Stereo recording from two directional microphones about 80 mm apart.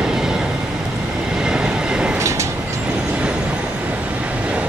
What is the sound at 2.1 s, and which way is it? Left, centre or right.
Vehicle, right.